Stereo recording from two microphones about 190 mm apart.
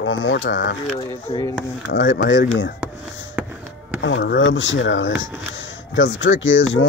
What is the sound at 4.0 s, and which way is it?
Speech, 75° left (ahead or behind).